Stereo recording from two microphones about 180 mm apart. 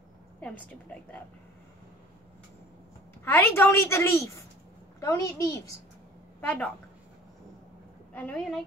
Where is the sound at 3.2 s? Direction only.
10° left (ahead or behind).